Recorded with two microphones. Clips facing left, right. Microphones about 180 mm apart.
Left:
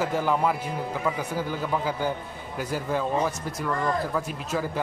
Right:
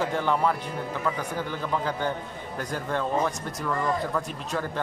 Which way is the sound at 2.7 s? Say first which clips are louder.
Left 1 dB; 5° left (ahead or behind).